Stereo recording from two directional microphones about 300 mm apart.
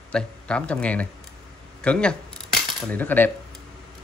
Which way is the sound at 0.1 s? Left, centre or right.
Centre.